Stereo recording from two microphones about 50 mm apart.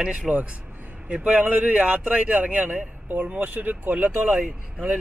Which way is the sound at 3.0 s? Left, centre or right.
Right.